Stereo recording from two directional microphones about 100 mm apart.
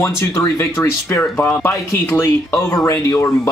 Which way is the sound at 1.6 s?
25° left (ahead or behind).